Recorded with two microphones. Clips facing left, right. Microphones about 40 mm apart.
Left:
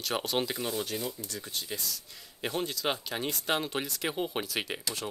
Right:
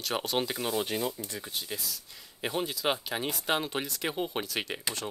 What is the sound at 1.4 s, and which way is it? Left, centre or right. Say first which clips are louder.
Speech: left 2 dB; centre.